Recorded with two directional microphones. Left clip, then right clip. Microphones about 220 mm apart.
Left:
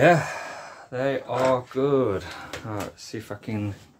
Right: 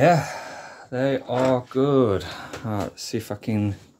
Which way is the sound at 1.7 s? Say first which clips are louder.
Right 3 dB; 35° right (ahead or behind).